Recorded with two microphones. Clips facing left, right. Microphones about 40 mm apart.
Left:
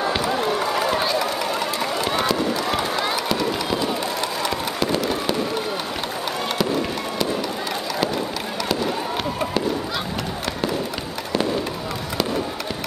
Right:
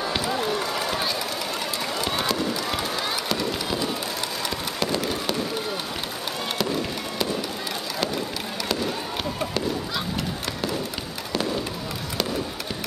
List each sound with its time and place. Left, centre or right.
0.1 s run: centre
3.3 s fireworks: centre
6.6 s fireworks: centre